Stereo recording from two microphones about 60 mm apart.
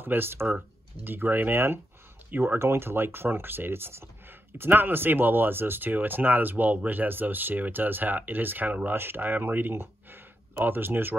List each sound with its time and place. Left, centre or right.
0.0 s speech: right